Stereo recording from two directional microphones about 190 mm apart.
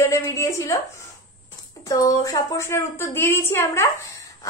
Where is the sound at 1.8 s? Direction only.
20° left (ahead or behind).